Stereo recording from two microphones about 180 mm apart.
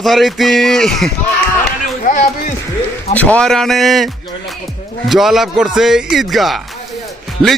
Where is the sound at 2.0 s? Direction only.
45° left (ahead or behind).